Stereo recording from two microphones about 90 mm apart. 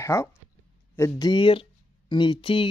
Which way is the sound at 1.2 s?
65° left (ahead or behind).